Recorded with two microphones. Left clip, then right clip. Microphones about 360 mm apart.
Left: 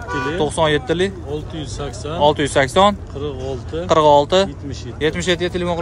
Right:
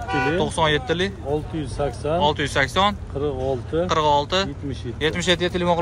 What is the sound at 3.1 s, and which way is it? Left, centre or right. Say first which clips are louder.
Speech: right 2 dB; centre.